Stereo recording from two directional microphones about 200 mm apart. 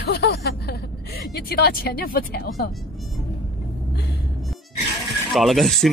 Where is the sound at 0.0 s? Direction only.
55° left (ahead or behind).